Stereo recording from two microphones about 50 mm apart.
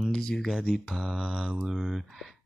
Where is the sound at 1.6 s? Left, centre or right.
Centre.